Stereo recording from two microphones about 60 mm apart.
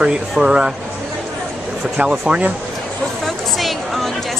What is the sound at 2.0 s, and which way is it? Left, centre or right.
Speech, centre.